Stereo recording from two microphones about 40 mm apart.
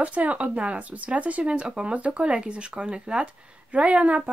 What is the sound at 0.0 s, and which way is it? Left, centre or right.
Speech, right.